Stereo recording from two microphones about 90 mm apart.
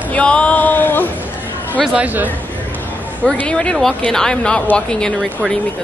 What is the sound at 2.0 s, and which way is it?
Speech, 20° right (ahead or behind).